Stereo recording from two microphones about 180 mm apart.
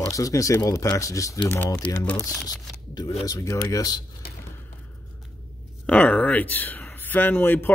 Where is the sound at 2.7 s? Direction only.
20° left (ahead or behind).